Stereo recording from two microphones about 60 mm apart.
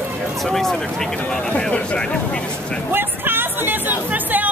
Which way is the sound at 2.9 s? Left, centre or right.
Right.